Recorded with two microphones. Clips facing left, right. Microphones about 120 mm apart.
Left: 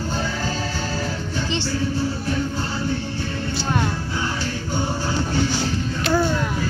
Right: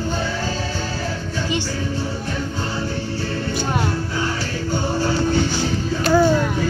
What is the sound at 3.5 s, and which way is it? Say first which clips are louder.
Music: even; 20° right (ahead or behind).